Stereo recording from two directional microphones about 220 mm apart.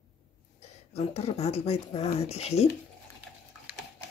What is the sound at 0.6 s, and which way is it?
Speech, 30° left (ahead or behind).